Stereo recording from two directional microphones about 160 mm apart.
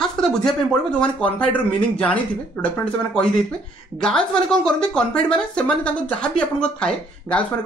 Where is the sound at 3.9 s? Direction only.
5° left (ahead or behind).